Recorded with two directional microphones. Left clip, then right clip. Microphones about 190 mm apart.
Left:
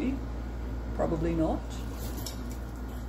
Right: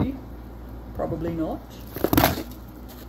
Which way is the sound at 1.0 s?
40° right (ahead or behind).